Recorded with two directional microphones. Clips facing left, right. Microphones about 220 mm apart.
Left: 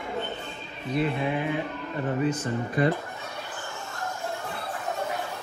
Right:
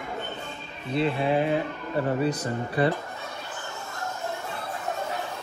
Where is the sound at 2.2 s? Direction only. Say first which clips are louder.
Even; 35° right (ahead or behind).